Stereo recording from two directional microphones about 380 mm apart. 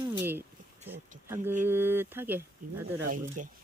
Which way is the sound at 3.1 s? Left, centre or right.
Right.